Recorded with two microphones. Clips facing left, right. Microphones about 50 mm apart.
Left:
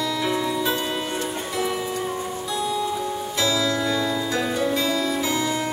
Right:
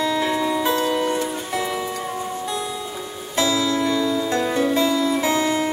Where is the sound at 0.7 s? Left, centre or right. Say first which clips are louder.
Right 5 dB; right.